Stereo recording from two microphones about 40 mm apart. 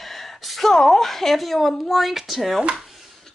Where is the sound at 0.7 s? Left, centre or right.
Centre.